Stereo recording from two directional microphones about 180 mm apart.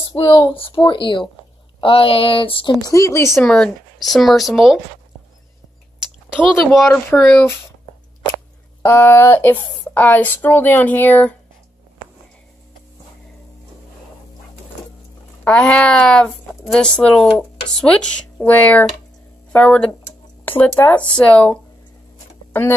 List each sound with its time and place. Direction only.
0.0 s a sound: 25° left (ahead or behind)
0.6 s a woman's voice: 30° left (ahead or behind)
3.3 s speech: 5° left (ahead or behind)
6.3 s speech: centre (ahead or behind)
7.1 s a woman's voice: 15° left (ahead or behind)
8.8 s a woman's voice: 10° left (ahead or behind)
15.4 s a woman's voice: 5° left (ahead or behind)